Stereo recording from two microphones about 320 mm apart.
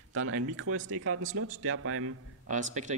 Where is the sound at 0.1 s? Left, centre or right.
Right.